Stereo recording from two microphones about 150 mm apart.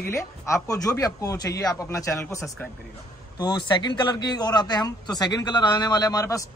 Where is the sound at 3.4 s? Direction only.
30° left (ahead or behind).